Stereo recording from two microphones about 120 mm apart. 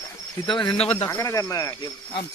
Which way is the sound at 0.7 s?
55° left (ahead or behind).